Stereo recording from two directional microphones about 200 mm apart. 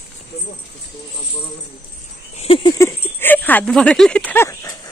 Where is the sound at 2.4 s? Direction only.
30° left (ahead or behind).